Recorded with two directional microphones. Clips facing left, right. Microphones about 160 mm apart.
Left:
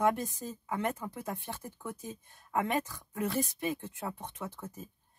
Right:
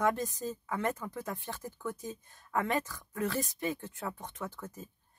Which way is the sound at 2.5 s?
15° left (ahead or behind).